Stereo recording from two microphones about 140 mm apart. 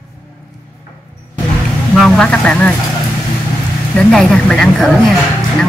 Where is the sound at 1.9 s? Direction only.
5° left (ahead or behind).